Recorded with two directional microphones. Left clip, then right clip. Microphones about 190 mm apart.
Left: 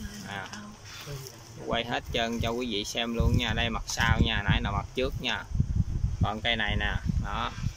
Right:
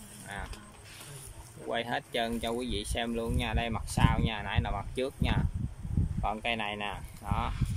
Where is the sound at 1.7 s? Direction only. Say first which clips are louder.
Left 3 dB; centre (ahead or behind).